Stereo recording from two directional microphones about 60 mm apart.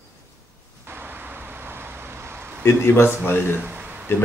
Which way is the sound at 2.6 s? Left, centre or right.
Left.